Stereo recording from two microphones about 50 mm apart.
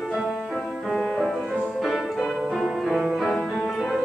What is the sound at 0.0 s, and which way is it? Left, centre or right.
Music, centre.